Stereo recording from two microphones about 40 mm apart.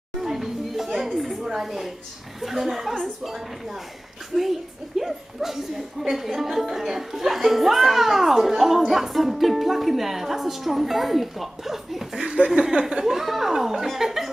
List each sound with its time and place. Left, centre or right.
0.2 s a sound: centre
2.4 s a woman's voice: centre
2.9 s a woman's voice: centre
4.4 s a woman's voice: centre
12.2 s speech: right
12.4 s a woman's voice: centre